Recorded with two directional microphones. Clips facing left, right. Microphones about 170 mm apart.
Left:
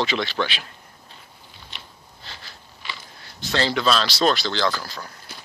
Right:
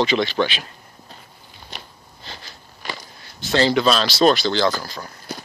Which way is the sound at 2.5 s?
40° right (ahead or behind).